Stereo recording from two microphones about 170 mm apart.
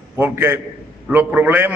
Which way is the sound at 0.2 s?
10° right (ahead or behind).